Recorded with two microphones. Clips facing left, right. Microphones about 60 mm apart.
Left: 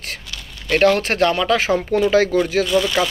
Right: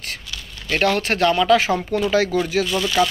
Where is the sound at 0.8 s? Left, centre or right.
Left.